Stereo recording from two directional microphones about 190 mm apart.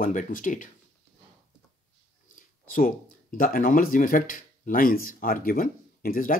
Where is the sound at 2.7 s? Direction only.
45° left (ahead or behind).